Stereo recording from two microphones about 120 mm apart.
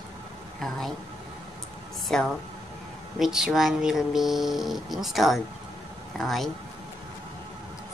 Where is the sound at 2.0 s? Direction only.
5° left (ahead or behind).